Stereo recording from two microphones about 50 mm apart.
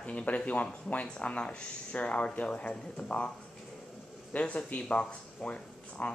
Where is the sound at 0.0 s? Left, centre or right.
Left.